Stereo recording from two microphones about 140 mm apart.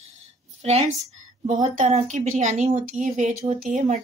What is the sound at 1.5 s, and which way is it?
Speech, 60° right (ahead or behind).